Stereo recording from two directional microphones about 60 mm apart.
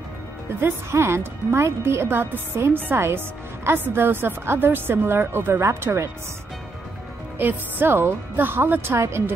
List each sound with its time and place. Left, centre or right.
0.6 s speech: right
7.3 s speech: right
8.9 s speech: right